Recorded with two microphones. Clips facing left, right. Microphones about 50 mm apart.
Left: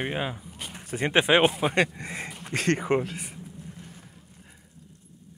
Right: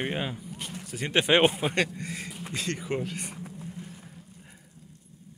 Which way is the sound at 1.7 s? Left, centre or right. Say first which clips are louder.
Left 3 dB; left.